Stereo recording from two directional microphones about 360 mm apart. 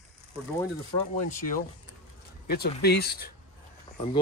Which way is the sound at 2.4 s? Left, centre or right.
Left.